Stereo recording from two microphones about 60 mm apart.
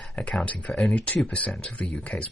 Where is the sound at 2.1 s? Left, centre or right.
Left.